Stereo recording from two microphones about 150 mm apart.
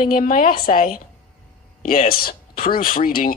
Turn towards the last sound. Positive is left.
turn(degrees=70)  # may be behind; listen again after turning